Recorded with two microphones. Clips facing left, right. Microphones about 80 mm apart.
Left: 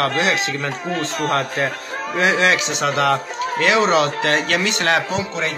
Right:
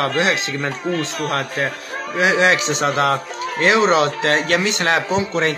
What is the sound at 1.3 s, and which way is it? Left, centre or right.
Speech, centre.